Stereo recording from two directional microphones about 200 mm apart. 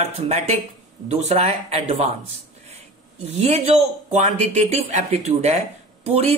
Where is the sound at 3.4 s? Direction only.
30° right (ahead or behind).